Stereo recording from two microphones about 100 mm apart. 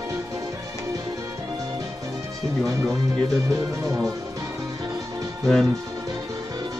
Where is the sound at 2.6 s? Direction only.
30° right (ahead or behind).